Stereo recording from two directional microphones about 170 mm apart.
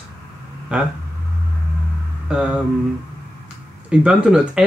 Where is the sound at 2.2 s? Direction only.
5° right (ahead or behind).